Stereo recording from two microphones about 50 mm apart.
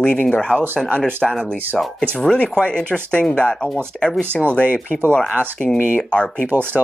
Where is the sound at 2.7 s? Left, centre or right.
Left.